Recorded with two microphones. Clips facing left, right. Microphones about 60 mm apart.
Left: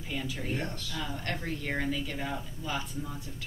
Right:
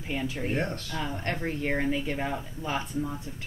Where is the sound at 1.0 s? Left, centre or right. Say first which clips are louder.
Right 4 dB; right.